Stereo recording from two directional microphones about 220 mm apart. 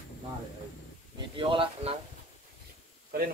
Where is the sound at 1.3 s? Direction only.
25° right (ahead or behind).